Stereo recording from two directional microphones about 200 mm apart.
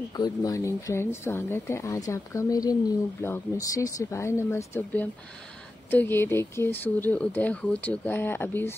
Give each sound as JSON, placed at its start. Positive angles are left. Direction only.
{"t": 0.1, "sound": "speech", "side_deg": 20}